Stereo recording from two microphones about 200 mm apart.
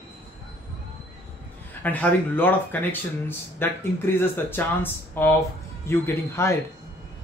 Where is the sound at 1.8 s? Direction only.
10° left (ahead or behind).